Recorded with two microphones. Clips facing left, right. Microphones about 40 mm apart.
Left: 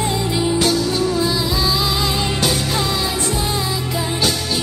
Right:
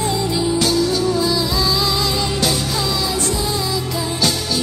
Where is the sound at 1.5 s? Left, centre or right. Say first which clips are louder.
Even; centre.